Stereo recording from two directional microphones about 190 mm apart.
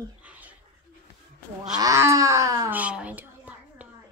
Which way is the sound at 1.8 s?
15° right (ahead or behind).